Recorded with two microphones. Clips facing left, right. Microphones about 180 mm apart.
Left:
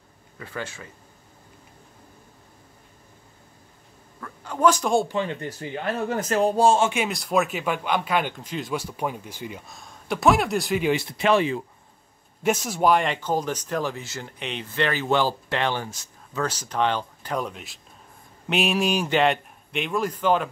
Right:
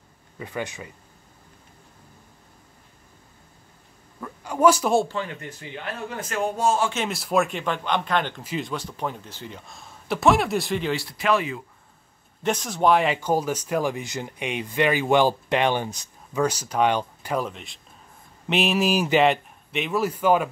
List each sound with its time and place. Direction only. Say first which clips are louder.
0.4 s speech: right 3 dB; 15° right (ahead or behind)
4.2 s a sound: right 2 dB; 10° right (ahead or behind)
5.0 s speech: left 4 dB; 20° left (ahead or behind)
5.6 s speech: left 6 dB; 40° left (ahead or behind)
7.1 s speech: even; centre (ahead or behind)
9.7 s speech: right 3 dB; centre (ahead or behind)
10.8 s speech: left 4 dB; 20° left (ahead or behind)
12.4 s speech: even; 5° left (ahead or behind); by 20.4 s 10° right (ahead or behind)